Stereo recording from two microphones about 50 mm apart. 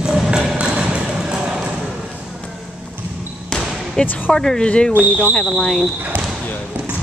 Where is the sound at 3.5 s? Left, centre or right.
Centre.